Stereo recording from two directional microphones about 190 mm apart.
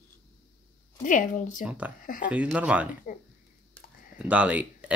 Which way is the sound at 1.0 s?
40° left (ahead or behind).